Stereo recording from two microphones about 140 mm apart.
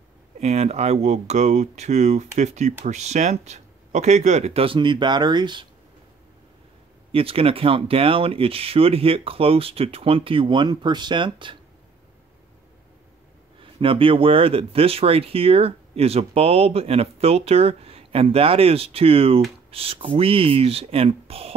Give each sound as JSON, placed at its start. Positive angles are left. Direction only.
{"t": 0.4, "sound": "speech", "side_deg": -50}
{"t": 7.1, "sound": "speech", "side_deg": -40}
{"t": 13.6, "sound": "speech", "side_deg": -40}